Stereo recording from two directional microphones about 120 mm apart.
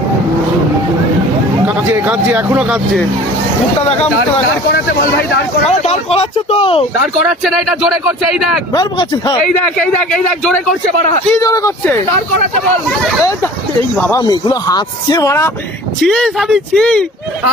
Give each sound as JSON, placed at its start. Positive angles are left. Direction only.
{"t": 1.9, "sound": "speech", "side_deg": -15}
{"t": 5.7, "sound": "speech", "side_deg": 55}
{"t": 7.2, "sound": "speech", "side_deg": -5}
{"t": 10.1, "sound": "speech", "side_deg": 5}
{"t": 11.4, "sound": "speech", "side_deg": 30}
{"t": 14.1, "sound": "speech", "side_deg": 35}
{"t": 16.0, "sound": "speech", "side_deg": 0}